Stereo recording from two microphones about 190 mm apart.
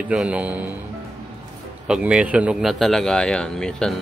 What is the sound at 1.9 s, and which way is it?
Speech, 5° right (ahead or behind).